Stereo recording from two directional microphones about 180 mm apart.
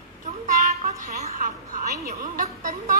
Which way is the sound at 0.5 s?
55° right (ahead or behind).